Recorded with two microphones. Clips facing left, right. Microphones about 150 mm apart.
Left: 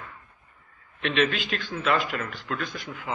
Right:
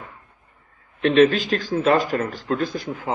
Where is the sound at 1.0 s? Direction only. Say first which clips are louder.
Right 10 dB; 40° right (ahead or behind).